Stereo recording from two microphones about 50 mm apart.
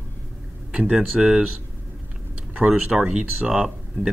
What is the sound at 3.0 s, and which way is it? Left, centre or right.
Speech, right.